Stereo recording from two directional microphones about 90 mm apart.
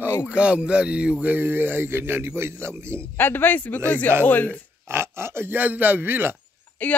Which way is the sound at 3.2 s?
20° left (ahead or behind).